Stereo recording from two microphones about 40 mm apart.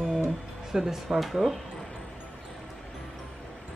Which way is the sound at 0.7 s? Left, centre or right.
Centre.